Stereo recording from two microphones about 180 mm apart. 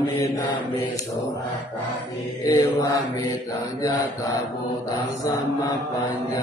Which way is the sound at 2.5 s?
20° left (ahead or behind).